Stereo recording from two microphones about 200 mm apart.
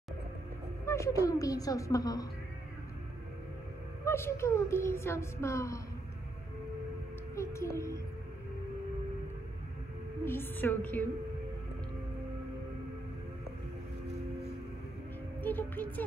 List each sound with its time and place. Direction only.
0.8 s speech: 15° left (ahead or behind)
4.0 s speech: 15° left (ahead or behind)
7.3 s speech: 15° left (ahead or behind)
10.2 s speech: 10° left (ahead or behind)
15.4 s music: 10° left (ahead or behind)